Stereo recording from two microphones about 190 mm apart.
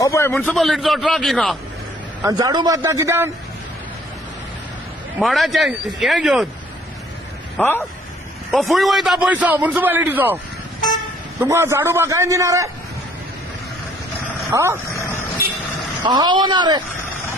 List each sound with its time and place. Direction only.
0.0 s a sound: 15° left (ahead or behind)
0.3 s a man's voice: 5° left (ahead or behind)
2.2 s a man's voice: 20° right (ahead or behind)
5.2 s a man's voice: centre (ahead or behind)
7.5 s speech: 10° left (ahead or behind)
8.5 s a man's voice: centre (ahead or behind)
11.4 s a man's voice: 15° right (ahead or behind)
14.5 s a man's voice: 15° right (ahead or behind)
16.0 s a man's voice: 20° right (ahead or behind)